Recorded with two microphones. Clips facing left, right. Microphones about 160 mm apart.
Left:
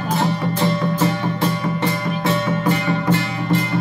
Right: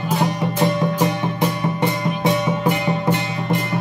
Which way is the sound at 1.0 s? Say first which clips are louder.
Even; 15° right (ahead or behind).